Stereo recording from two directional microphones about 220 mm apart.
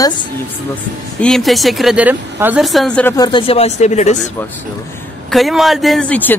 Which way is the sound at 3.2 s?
20° left (ahead or behind).